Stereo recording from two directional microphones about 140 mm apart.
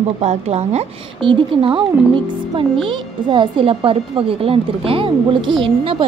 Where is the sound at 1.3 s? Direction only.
35° right (ahead or behind).